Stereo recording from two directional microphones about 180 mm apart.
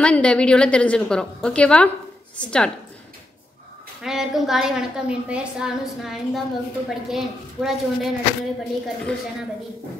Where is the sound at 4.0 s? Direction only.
Centre (ahead or behind).